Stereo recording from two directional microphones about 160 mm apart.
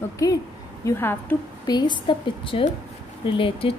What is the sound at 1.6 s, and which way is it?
A woman's voice, 25° left (ahead or behind).